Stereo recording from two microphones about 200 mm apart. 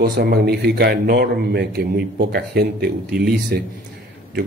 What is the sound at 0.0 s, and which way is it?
A man's voice, 50° right (ahead or behind).